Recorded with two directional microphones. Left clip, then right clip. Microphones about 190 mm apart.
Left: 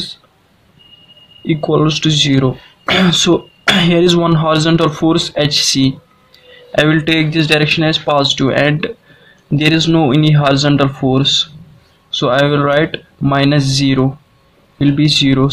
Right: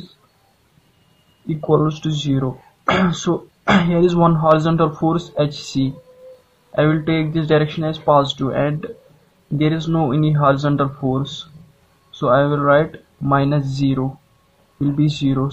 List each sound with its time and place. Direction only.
1.7 s speech: 30° left (ahead or behind)